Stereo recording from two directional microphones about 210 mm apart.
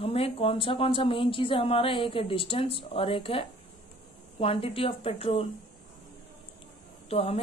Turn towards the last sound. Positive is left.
turn(degrees=25)  # may be behind; listen again after turning